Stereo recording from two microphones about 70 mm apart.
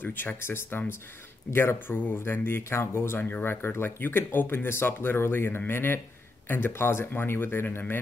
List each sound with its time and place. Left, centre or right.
0.0 s speech: left